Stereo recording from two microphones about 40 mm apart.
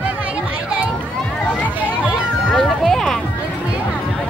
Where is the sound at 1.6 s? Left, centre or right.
Left.